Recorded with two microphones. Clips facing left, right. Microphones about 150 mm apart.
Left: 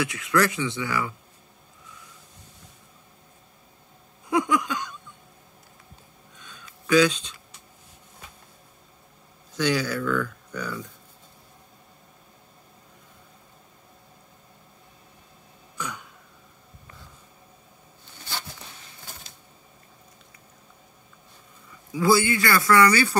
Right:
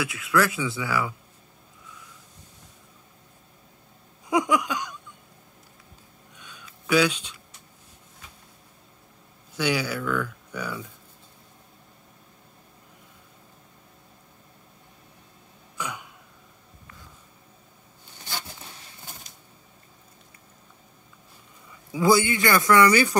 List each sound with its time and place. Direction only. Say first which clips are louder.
0.0 s speech: left 1 dB; 5° right (ahead or behind)
4.3 s a sound: even; 15° right (ahead or behind)
6.3 s a sound: even; 10° right (ahead or behind)
9.6 s speech: left 2 dB; 10° right (ahead or behind)
15.8 s throat clearing: right 1 dB; 10° right (ahead or behind)
21.9 s a man's voice: even; 20° right (ahead or behind)